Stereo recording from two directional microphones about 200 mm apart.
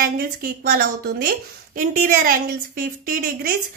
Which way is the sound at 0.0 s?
45° right (ahead or behind).